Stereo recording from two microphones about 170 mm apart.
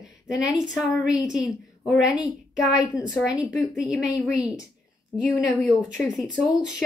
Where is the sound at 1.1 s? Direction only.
5° right (ahead or behind).